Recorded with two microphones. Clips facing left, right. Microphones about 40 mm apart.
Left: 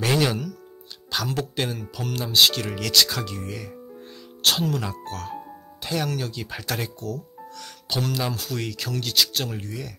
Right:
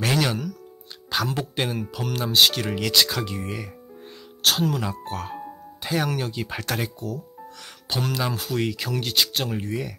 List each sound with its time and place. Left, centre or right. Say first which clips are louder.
0.0 s music: left 1 dB; centre
1.1 s speech: right 1 dB; centre
5.0 s speech: right 2 dB; centre